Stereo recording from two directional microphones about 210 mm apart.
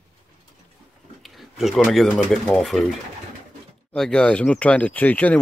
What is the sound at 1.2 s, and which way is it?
Speech, centre (ahead or behind).